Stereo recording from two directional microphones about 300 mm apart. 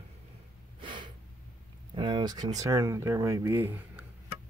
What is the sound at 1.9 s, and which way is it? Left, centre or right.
Speech, centre.